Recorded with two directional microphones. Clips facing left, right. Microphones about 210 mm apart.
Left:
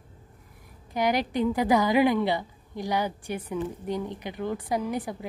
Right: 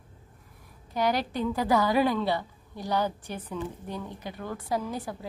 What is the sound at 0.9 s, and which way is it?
A woman's voice, 15° left (ahead or behind).